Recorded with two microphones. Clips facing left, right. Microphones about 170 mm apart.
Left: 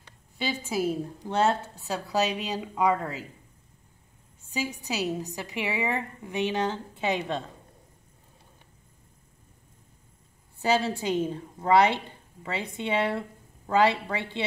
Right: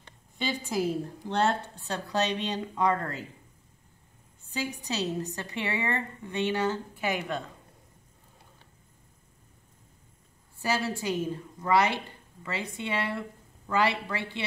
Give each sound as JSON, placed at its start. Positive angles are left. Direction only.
{"t": 0.4, "sound": "a woman's voice", "side_deg": 5}
{"t": 4.8, "sound": "a woman's voice", "side_deg": 10}
{"t": 10.6, "sound": "a woman's voice", "side_deg": 20}